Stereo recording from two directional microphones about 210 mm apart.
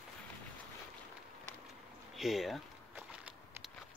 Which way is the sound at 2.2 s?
Centre (ahead or behind).